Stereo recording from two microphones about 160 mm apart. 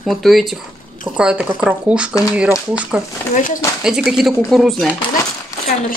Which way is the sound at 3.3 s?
55° left (ahead or behind).